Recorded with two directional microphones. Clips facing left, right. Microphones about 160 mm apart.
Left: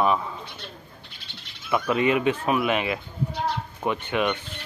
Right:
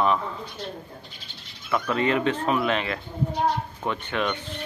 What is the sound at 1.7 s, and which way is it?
Speech, 15° left (ahead or behind).